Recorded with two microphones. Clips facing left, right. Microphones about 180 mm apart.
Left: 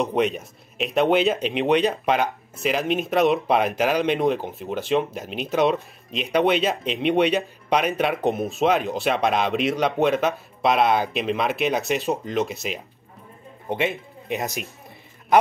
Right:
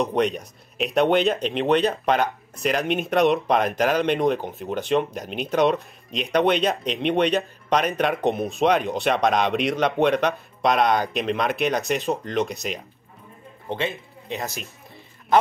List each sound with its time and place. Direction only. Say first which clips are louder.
0.0 s speech: even; 5° left (ahead or behind)
13.7 s speech: left 3 dB; 15° left (ahead or behind)